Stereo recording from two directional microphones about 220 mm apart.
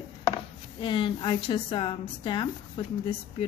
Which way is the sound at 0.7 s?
20° left (ahead or behind).